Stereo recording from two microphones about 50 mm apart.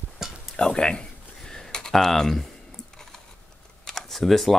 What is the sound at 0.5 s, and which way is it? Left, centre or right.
Speech, centre.